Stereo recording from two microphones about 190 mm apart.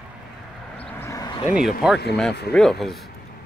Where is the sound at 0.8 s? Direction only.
15° left (ahead or behind).